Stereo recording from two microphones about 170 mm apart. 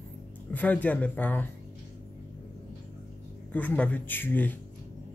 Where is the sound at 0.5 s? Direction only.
10° left (ahead or behind).